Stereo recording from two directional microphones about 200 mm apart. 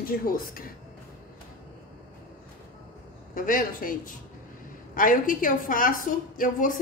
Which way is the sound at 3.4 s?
45° left (ahead or behind).